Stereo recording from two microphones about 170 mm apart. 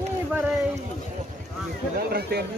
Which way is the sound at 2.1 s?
70° right (ahead or behind).